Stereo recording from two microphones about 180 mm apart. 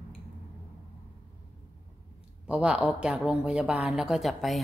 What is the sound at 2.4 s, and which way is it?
A woman's voice, 5° right (ahead or behind).